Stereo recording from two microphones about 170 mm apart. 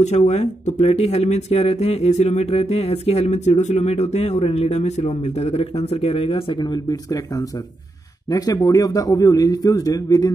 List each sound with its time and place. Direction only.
0.0 s a man's voice: 40° left (ahead or behind); by 10.3 s 20° left (ahead or behind)